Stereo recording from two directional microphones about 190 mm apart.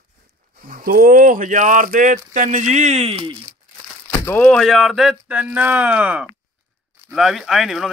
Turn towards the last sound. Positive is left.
turn(degrees=0)  # may be behind; listen again after turning